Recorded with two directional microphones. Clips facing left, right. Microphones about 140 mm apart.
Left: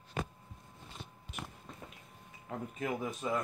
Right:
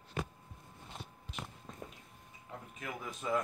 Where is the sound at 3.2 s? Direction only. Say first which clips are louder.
Right 1 dB; 5° left (ahead or behind).